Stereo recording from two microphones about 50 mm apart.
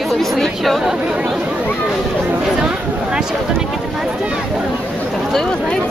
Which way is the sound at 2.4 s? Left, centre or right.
Centre.